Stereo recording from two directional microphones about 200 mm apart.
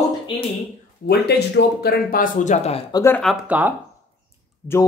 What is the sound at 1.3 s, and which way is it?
Speech, 55° left (ahead or behind).